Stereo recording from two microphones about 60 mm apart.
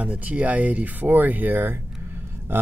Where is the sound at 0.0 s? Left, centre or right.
Right.